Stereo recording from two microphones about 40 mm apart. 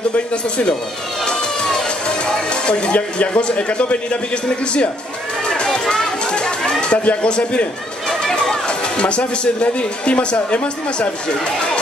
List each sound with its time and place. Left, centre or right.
1.2 s music: centre
5.5 s a sound: centre
8.1 s music: centre
9.4 s speech: left